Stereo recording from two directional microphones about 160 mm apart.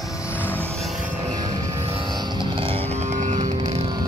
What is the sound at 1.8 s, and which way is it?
Vehicle, 35° right (ahead or behind).